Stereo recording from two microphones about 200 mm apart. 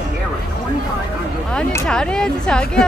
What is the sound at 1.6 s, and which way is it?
Speech, 5° left (ahead or behind).